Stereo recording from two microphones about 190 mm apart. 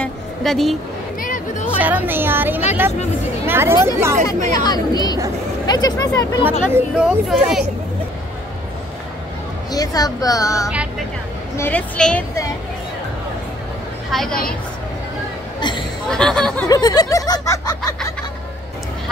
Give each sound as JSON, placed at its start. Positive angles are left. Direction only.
{"t": 0.0, "sound": "a sound", "side_deg": 0}
{"t": 1.2, "sound": "music", "side_deg": 40}
{"t": 1.8, "sound": "speech", "side_deg": -10}
{"t": 4.6, "sound": "snicker", "side_deg": 20}
{"t": 6.7, "sound": "speech", "side_deg": -5}
{"t": 9.7, "sound": "snicker", "side_deg": 20}
{"t": 11.5, "sound": "a woman's voice", "side_deg": 10}
{"t": 14.1, "sound": "speech", "side_deg": 0}
{"t": 16.1, "sound": "speech", "side_deg": 5}
{"t": 16.6, "sound": "snicker", "side_deg": 20}